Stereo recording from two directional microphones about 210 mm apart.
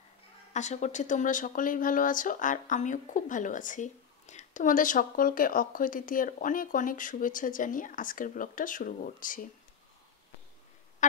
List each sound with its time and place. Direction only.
0.5 s speech: 35° left (ahead or behind)